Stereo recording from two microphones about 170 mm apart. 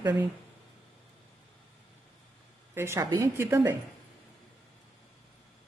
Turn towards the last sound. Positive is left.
turn(degrees=-15)  # may be behind; listen again after turning